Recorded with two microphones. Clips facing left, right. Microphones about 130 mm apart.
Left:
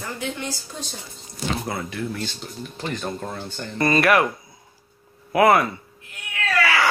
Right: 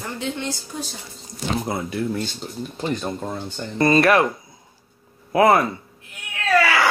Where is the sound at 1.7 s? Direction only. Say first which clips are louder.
Right 4 dB; 20° right (ahead or behind).